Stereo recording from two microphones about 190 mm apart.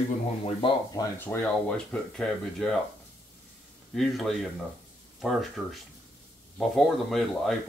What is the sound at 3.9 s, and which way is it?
Speech, centre (ahead or behind).